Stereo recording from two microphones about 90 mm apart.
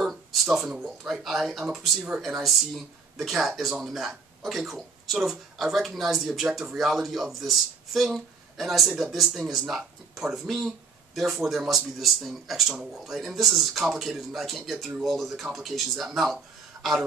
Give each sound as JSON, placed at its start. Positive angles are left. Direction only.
{"t": 0.0, "sound": "speech", "side_deg": 0}